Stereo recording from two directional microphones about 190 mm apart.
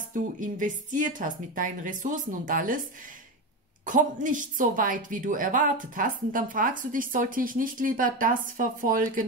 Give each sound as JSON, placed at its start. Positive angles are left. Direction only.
{"t": 0.1, "sound": "a woman's voice", "side_deg": -45}
{"t": 3.8, "sound": "a woman's voice", "side_deg": -45}